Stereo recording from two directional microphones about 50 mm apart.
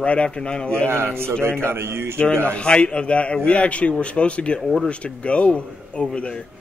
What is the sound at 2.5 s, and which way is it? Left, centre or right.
Speech, left.